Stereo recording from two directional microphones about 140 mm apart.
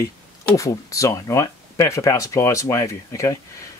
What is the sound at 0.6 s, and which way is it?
Speech, 25° left (ahead or behind).